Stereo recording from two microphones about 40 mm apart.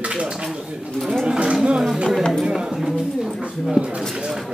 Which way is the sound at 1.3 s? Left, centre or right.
Right.